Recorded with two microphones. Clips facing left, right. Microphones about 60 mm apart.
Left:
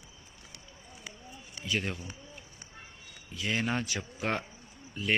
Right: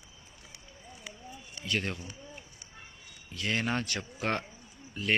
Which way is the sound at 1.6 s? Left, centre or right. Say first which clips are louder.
Even; centre.